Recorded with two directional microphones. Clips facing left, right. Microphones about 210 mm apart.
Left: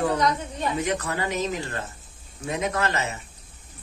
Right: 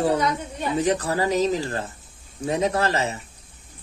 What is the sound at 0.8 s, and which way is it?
Speech, 35° right (ahead or behind).